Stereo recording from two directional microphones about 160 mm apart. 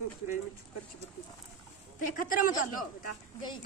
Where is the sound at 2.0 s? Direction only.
55° left (ahead or behind).